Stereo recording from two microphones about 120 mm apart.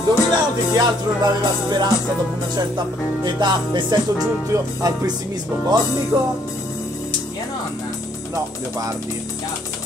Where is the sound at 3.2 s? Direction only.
40° right (ahead or behind).